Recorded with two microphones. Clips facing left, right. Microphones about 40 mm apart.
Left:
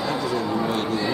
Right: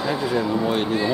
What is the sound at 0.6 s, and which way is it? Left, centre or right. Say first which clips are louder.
Speech: right 2 dB; centre.